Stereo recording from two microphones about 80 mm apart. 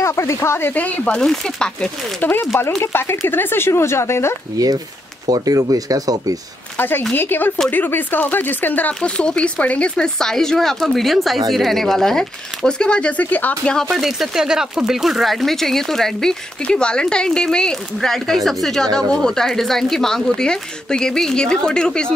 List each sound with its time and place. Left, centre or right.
0.0 s speech: left; by 2.2 s centre
2.8 s speech: left
5.2 s speech: right
6.8 s speech: left
13.8 s speech: centre